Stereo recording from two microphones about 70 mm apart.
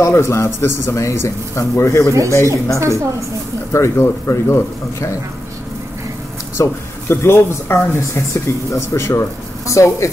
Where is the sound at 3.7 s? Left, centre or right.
Left.